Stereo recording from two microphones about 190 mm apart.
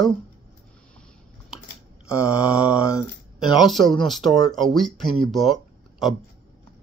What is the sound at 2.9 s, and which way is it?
Speech, 20° left (ahead or behind).